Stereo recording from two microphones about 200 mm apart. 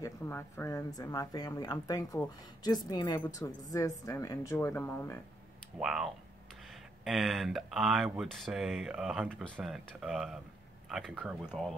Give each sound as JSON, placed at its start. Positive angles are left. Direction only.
{"t": 0.0, "sound": "speech", "side_deg": 10}
{"t": 5.8, "sound": "speech", "side_deg": -5}